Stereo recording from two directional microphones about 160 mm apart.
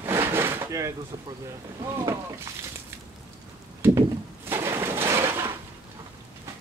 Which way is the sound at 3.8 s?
15° right (ahead or behind).